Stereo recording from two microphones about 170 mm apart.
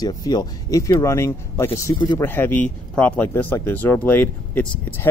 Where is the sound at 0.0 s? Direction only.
20° left (ahead or behind).